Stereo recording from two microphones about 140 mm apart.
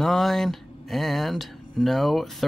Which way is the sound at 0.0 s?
Centre (ahead or behind).